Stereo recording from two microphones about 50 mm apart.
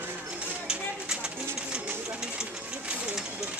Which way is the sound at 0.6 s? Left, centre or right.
Centre.